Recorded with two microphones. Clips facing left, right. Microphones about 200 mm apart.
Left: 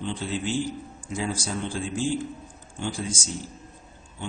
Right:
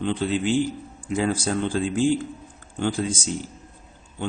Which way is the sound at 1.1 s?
60° right (ahead or behind).